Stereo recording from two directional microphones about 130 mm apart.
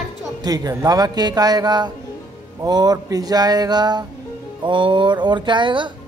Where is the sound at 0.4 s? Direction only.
30° right (ahead or behind).